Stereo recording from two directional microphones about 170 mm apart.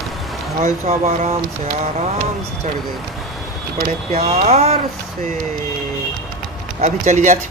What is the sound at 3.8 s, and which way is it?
Speech, 40° right (ahead or behind).